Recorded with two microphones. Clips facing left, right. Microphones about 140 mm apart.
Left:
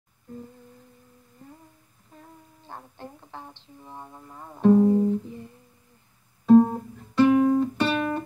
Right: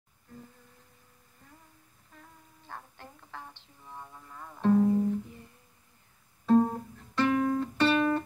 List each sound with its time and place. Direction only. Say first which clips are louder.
2.7 s speech: left 5 dB; 25° left (ahead or behind)
4.7 s music: left 5 dB; 25° left (ahead or behind)
6.4 s music: left 7 dB; 10° left (ahead or behind)